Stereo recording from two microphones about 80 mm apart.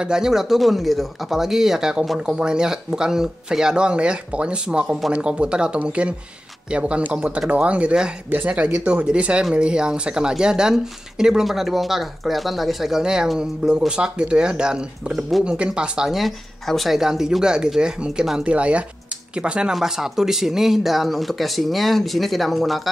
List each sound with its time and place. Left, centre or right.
0.0 s speech: centre